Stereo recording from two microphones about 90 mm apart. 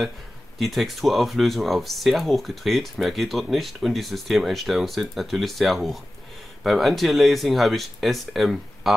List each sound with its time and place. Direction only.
0.6 s speech: centre (ahead or behind)